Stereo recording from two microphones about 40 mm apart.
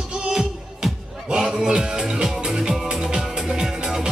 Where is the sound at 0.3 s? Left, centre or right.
Centre.